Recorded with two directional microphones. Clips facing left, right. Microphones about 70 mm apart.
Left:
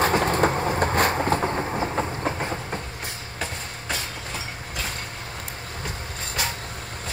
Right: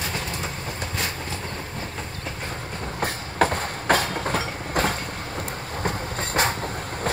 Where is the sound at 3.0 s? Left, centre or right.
Right.